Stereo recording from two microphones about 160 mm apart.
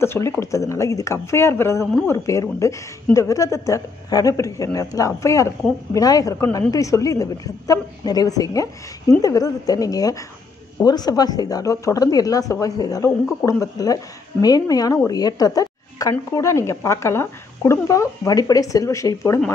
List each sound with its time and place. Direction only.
0.0 s speech: 15° left (ahead or behind)